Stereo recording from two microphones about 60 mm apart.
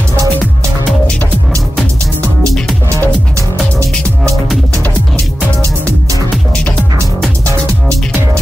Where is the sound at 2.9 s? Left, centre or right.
Right.